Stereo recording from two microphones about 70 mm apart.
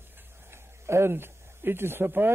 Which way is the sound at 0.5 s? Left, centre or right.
Right.